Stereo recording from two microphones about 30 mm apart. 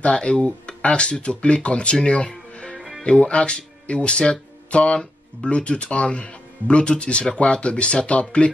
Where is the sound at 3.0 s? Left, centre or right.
Left.